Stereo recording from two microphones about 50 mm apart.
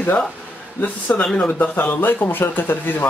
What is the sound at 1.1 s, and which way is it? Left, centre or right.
Speech, left.